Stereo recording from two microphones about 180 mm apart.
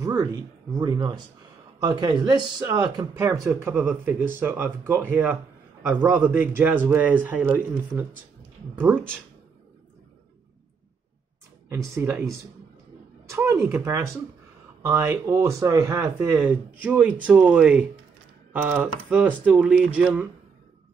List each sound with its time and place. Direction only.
0.0 s speech: 20° right (ahead or behind)
11.7 s speech: 15° right (ahead or behind)